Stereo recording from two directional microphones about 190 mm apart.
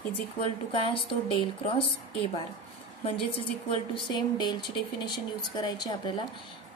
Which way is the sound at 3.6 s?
25° left (ahead or behind).